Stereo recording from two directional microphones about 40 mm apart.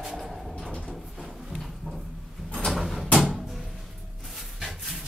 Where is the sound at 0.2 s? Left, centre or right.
Centre.